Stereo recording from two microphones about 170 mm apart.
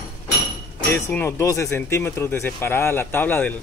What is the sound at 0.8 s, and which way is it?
Speech, 10° left (ahead or behind).